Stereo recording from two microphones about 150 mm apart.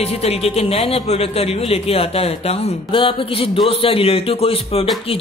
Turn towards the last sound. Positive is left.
turn(degrees=40)  # may be behind; listen again after turning